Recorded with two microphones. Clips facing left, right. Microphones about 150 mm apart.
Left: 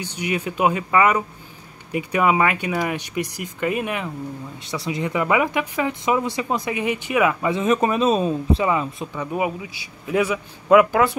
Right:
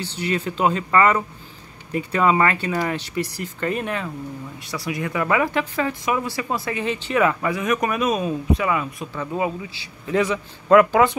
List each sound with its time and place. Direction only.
0.0 s speech: 15° left (ahead or behind)
4.6 s speech: 25° left (ahead or behind)
7.4 s speech: 25° left (ahead or behind); by 11.1 s 5° left (ahead or behind)